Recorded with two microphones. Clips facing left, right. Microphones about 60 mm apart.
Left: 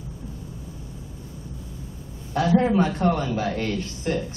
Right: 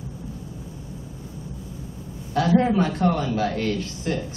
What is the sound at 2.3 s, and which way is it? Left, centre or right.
A man's voice, left.